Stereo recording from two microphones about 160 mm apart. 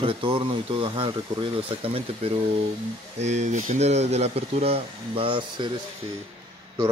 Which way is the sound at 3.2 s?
45° right (ahead or behind).